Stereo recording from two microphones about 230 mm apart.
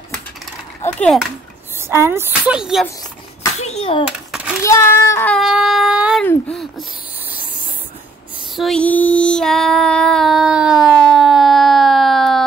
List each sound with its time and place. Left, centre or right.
0.9 s a child's voice: centre
1.8 s a woman's voice: centre
3.5 s a sound: left
4.6 s speech: centre
6.2 s a sound: centre
8.5 s child singing: centre